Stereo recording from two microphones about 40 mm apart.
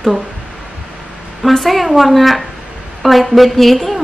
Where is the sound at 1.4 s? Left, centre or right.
Centre.